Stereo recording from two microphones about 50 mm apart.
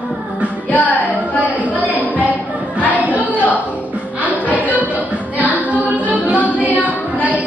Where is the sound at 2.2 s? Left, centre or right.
Right.